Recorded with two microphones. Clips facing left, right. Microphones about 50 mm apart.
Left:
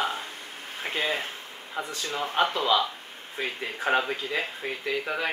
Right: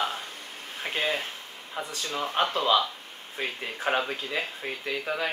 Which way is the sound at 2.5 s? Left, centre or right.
Centre.